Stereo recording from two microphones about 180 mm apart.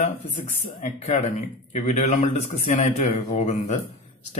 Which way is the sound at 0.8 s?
40° left (ahead or behind).